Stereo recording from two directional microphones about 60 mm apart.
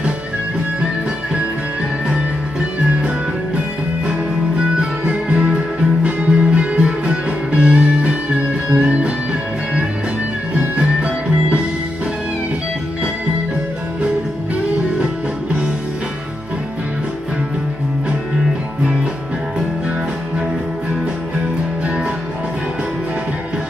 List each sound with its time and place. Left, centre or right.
4.6 s music: centre